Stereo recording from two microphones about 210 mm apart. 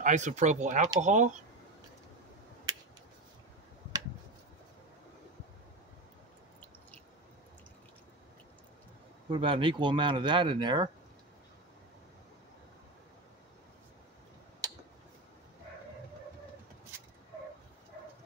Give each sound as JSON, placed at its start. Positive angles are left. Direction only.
{"t": 0.0, "sound": "speech", "side_deg": -35}
{"t": 9.3, "sound": "speech", "side_deg": -25}
{"t": 14.6, "sound": "tick-tock", "side_deg": -15}